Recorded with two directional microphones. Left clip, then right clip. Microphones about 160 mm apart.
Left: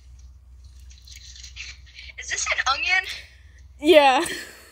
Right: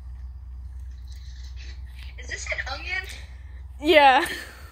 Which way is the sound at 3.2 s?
40° left (ahead or behind).